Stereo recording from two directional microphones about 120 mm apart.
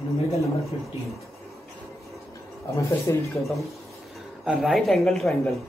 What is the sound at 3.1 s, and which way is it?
Speech, 25° left (ahead or behind).